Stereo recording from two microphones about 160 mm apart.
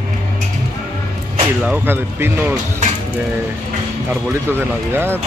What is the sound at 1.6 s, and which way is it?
Speech, 10° right (ahead or behind).